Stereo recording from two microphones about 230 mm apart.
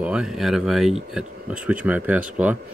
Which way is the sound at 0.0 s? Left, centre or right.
Centre.